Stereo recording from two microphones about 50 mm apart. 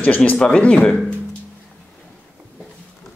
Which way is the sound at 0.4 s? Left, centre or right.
Left.